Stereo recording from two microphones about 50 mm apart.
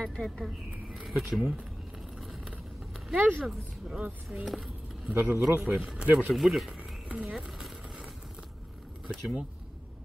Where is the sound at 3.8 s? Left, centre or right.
Centre.